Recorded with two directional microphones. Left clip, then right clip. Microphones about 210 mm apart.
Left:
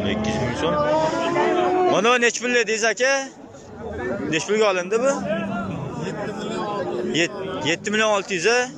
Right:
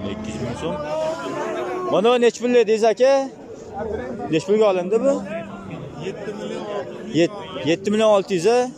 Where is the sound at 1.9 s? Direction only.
20° right (ahead or behind).